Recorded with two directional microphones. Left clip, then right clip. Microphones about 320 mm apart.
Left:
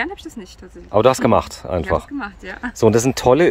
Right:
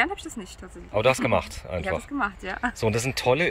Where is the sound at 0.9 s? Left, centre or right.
Centre.